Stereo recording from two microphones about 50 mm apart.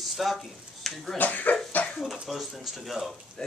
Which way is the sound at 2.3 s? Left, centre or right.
Centre.